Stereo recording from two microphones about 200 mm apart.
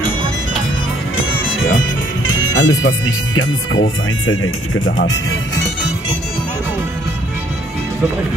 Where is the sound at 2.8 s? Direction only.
80° left.